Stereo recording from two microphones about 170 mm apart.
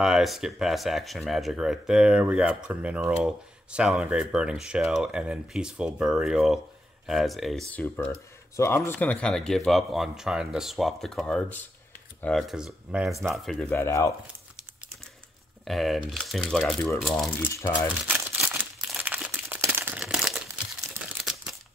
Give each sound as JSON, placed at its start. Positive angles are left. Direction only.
{"t": 0.0, "sound": "speech", "side_deg": 0}
{"t": 7.7, "sound": "speech", "side_deg": 10}
{"t": 13.7, "sound": "speech", "side_deg": 15}
{"t": 15.6, "sound": "speech", "side_deg": 0}
{"t": 17.4, "sound": "speech", "side_deg": 15}
{"t": 18.0, "sound": "crumpling", "side_deg": -10}
{"t": 19.7, "sound": "a sound", "side_deg": -10}